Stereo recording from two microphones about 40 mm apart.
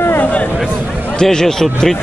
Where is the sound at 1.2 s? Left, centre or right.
Centre.